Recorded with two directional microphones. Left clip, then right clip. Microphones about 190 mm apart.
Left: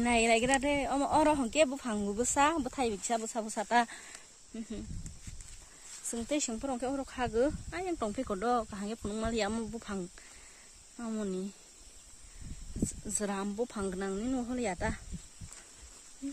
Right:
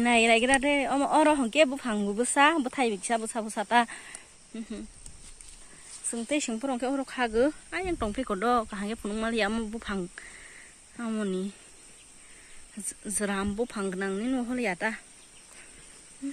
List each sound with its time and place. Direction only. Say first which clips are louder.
0.0 s speech: right 5 dB; 5° left (ahead or behind)
6.0 s speech: right 4 dB; 15° left (ahead or behind)
6.5 s speech: right 5 dB; centre (ahead or behind)
13.0 s speech: right 7 dB; 10° left (ahead or behind)